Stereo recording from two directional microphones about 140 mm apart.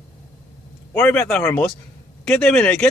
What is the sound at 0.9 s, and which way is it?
Speech, 15° left (ahead or behind).